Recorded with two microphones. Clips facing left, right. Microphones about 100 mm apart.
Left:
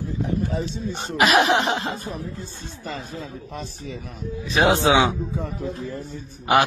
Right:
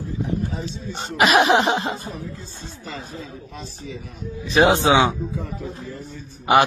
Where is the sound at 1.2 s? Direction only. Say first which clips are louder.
Right 2 dB; centre (ahead or behind).